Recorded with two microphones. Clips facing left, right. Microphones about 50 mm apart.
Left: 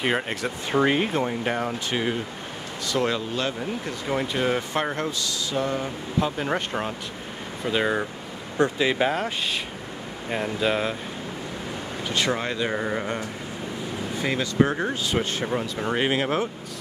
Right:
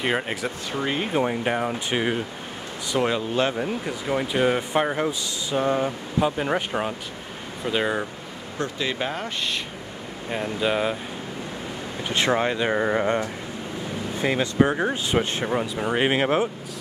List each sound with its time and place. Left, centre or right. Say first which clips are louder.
0.0 s speech: even; centre
0.7 s speech: left 7 dB; left
1.1 s speech: right 2 dB; centre
3.8 s speech: right 1 dB; centre
5.2 s speech: right 2 dB; right
6.1 s speech: right 2 dB; centre
8.7 s speech: left 5 dB; centre
10.6 s speech: right 2 dB; centre
12.1 s speech: right 4 dB; right
14.2 s speech: right 2 dB; centre
16.1 s speech: right 3 dB; right